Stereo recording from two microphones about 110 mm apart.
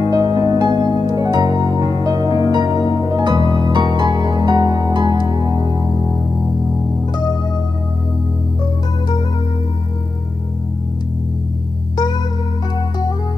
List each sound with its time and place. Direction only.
0.1 s music: 35° right (ahead or behind)